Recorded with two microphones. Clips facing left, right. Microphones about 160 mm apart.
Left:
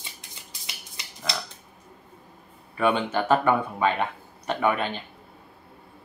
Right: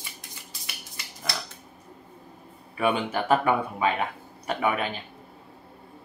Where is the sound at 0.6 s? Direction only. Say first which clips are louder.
Even; 20° left (ahead or behind).